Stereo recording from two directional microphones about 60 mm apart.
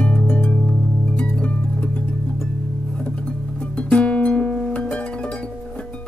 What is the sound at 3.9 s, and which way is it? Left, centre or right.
Music, left.